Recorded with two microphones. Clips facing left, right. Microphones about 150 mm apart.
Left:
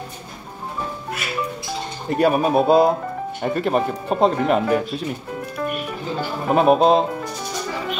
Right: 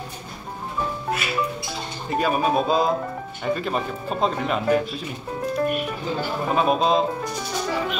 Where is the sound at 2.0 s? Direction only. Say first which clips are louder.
Left 4 dB; 60° left (ahead or behind).